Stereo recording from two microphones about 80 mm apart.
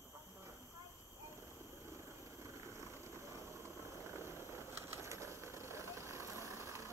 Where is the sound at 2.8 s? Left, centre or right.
Right.